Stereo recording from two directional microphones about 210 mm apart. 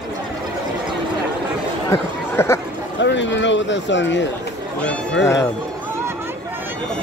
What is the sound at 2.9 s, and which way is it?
Speech, 60° left (ahead or behind).